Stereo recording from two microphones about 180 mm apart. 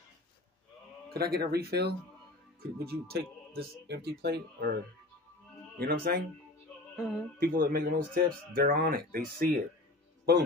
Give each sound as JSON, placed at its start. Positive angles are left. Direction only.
{"t": 1.1, "sound": "speech", "side_deg": -60}
{"t": 5.8, "sound": "speech", "side_deg": -60}
{"t": 7.0, "sound": "speech", "side_deg": 0}
{"t": 7.3, "sound": "speech", "side_deg": -55}